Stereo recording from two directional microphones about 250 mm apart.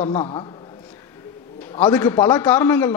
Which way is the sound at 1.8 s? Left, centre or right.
Centre.